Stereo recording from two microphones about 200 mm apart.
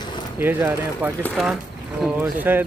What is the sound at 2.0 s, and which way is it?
Speech, 10° right (ahead or behind).